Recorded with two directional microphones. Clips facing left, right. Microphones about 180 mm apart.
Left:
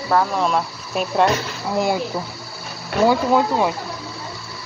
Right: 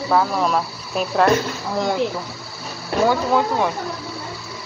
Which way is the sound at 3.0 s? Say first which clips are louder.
Left 2 dB; 15° left (ahead or behind).